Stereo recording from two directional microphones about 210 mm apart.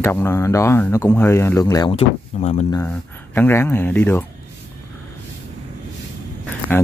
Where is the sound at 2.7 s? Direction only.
10° left (ahead or behind).